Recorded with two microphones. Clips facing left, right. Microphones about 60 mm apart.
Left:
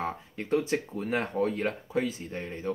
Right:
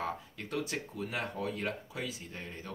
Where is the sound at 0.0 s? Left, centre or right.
Left.